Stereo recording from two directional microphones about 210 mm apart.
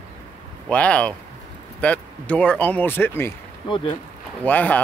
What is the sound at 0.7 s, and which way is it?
Speech, 5° left (ahead or behind).